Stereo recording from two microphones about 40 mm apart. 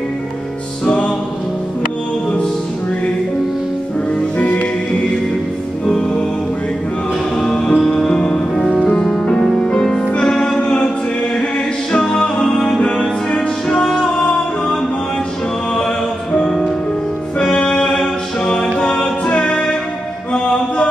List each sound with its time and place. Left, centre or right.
0.8 s music: left
4.4 s music: left
5.9 s music: centre
7.3 s music: centre
11.9 s music: left
13.8 s music: centre
16.4 s music: centre; by 20.8 s left